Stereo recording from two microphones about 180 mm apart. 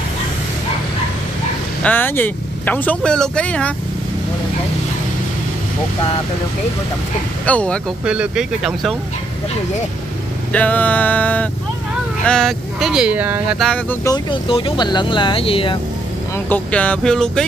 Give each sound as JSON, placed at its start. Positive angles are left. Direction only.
{"t": 1.8, "sound": "speech", "side_deg": 10}
{"t": 7.4, "sound": "speech", "side_deg": 5}
{"t": 8.0, "sound": "speech", "side_deg": -5}
{"t": 10.5, "sound": "speech", "side_deg": 10}
{"t": 13.7, "sound": "speech", "side_deg": 5}
{"t": 14.0, "sound": "speech", "side_deg": 25}
{"t": 16.4, "sound": "speech", "side_deg": 10}